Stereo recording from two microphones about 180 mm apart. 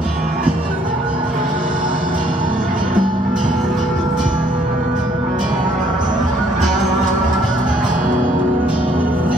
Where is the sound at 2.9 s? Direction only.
45° right (ahead or behind).